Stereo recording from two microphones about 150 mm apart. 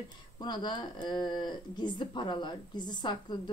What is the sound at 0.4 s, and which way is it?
A woman's voice, 30° left (ahead or behind).